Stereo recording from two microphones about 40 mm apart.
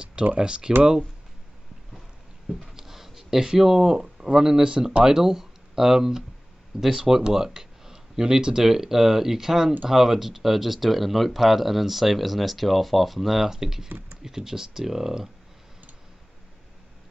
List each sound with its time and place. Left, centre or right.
0.0 s speech: right
2.6 s speech: centre
5.0 s speech: centre